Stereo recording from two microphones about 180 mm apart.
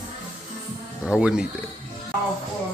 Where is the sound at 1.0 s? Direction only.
5° right (ahead or behind).